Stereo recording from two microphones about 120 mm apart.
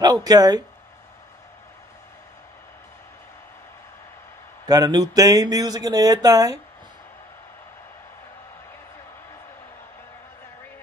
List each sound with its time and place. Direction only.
0.0 s speech: 35° right (ahead or behind)
4.6 s speech: 30° right (ahead or behind)